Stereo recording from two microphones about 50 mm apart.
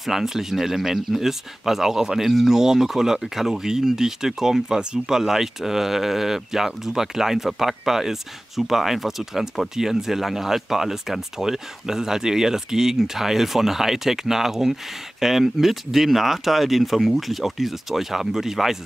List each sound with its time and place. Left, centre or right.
0.0 s speech: centre